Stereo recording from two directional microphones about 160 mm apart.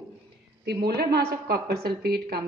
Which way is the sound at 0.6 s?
85° right.